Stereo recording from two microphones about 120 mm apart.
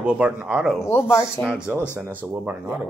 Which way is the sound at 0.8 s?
20° left (ahead or behind).